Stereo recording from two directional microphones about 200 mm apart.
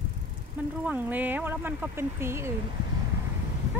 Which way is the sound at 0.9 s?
10° right (ahead or behind).